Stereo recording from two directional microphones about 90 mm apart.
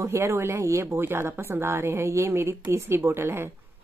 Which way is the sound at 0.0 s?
30° right (ahead or behind).